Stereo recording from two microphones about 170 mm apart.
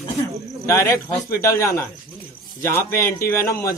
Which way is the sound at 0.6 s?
15° left (ahead or behind).